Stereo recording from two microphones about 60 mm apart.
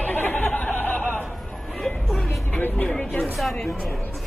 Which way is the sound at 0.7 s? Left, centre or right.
Left.